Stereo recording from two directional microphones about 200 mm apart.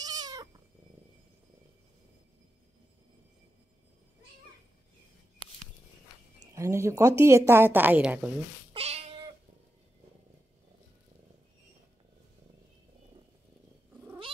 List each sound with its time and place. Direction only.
0.0 s cat: 20° right (ahead or behind)
6.5 s a woman's voice: 15° right (ahead or behind)
8.7 s cat: 30° right (ahead or behind)